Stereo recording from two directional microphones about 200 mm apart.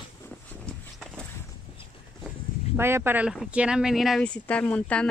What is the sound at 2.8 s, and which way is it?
Speech, 10° right (ahead or behind).